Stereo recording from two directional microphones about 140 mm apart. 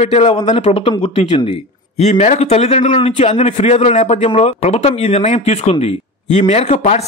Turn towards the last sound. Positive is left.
turn(degrees=55)  # may be behind; listen again after turning